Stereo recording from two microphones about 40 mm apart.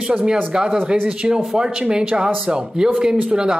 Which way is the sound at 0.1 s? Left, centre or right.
Right.